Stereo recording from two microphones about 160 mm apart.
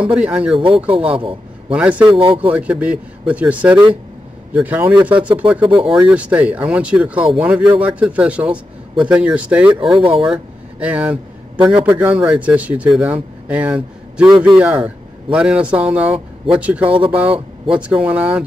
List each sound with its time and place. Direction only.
0.0 s speech: 5° right (ahead or behind)
1.7 s speech: 10° right (ahead or behind)
2.1 s speech: 35° right (ahead or behind)
2.5 s speech: 5° right (ahead or behind)
5.7 s speech: 35° right (ahead or behind)
6.0 s a man's voice: 10° right (ahead or behind)
9.9 s speech: 35° right (ahead or behind)
10.2 s speech: 5° right (ahead or behind)